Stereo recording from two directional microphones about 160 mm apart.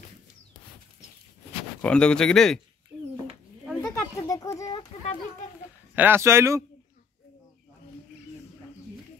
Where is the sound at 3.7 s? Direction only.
20° left (ahead or behind).